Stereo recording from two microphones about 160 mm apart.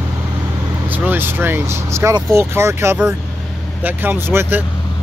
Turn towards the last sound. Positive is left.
turn(degrees=-15)  # may be behind; listen again after turning